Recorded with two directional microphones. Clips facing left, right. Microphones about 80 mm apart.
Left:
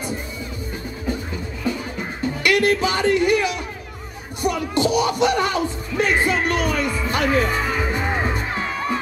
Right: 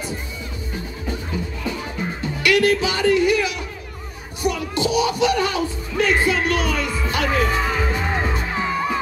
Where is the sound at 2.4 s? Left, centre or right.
Left.